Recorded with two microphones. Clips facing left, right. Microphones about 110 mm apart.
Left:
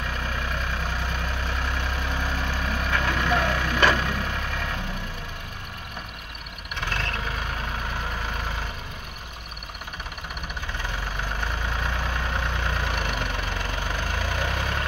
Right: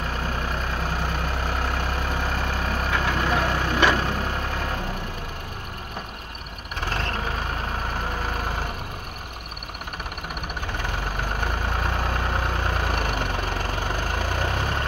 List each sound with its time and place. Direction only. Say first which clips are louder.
1.4 s vehicle: right 3 dB; 40° right (ahead or behind)
6.8 s vehicle: right 2 dB; 35° right (ahead or behind)
11.8 s vehicle: right 3 dB; 40° right (ahead or behind)